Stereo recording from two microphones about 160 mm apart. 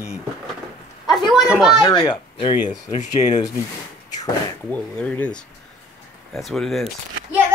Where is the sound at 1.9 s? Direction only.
25° left (ahead or behind).